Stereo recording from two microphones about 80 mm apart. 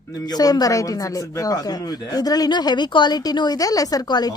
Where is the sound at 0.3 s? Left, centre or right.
Left.